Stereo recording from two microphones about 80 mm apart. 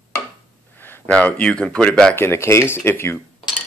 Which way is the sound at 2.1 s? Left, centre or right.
Left.